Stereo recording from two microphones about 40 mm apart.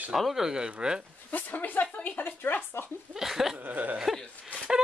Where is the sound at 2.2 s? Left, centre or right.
Left.